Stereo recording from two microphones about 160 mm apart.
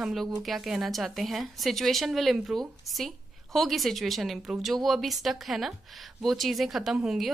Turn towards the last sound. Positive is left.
turn(degrees=0)  # may be behind; listen again after turning